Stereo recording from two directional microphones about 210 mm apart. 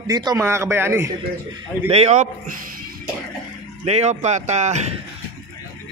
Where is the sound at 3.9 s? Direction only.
30° right (ahead or behind).